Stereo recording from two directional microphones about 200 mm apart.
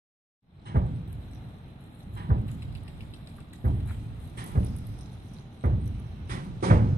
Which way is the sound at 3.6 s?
50° right (ahead or behind).